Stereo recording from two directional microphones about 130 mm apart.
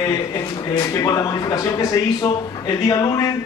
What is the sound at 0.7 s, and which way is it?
Speech, 25° left (ahead or behind).